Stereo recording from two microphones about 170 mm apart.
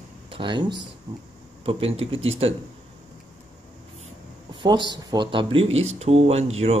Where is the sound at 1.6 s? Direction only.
35° right (ahead or behind).